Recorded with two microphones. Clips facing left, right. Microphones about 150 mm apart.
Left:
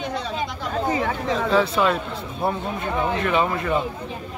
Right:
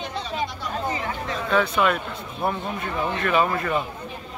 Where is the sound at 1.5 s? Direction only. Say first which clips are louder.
Even; 30° left (ahead or behind).